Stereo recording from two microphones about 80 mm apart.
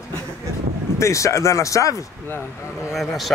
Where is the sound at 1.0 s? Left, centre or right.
Left.